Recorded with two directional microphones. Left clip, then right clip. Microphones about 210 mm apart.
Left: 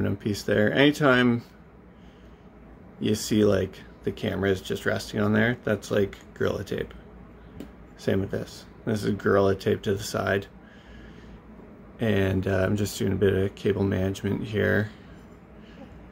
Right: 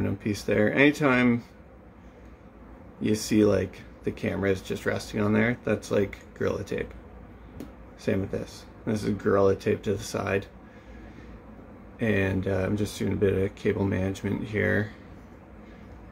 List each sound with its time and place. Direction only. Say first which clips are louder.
0.0 s speech: left 1 dB; 20° left (ahead or behind)
3.0 s speech: even; 20° left (ahead or behind)
8.0 s speech: left 2 dB; 20° left (ahead or behind)
12.0 s speech: left 1 dB; 25° left (ahead or behind)